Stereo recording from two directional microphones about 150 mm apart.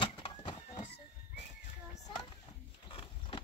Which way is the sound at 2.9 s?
40° left (ahead or behind).